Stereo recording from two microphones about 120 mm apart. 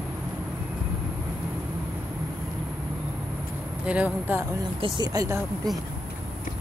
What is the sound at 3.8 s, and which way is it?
Speech, 10° right (ahead or behind).